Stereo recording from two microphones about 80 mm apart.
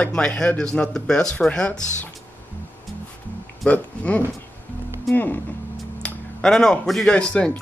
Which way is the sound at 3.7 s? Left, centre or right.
Centre.